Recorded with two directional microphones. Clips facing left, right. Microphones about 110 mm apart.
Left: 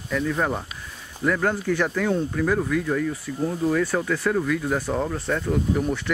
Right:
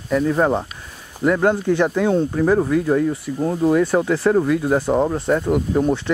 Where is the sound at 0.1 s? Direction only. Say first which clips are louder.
Right 7 dB; 35° right (ahead or behind).